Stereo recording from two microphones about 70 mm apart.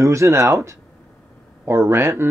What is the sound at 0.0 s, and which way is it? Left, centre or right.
Speech, right.